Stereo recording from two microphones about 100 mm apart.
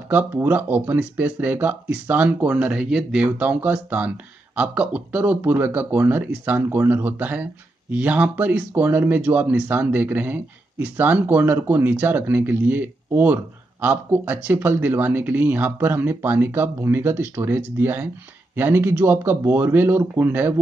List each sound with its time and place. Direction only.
0.1 s speech: 20° right (ahead or behind)